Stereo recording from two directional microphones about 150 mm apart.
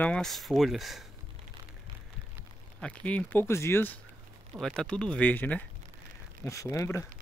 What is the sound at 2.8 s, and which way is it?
Speech, 10° left (ahead or behind).